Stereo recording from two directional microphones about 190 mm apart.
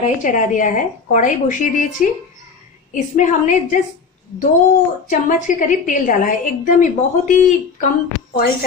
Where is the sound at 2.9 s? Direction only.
40° left (ahead or behind).